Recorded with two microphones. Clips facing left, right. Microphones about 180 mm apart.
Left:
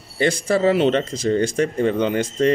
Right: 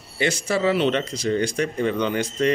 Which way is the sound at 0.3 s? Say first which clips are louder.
Left 4 dB; 50° left (ahead or behind).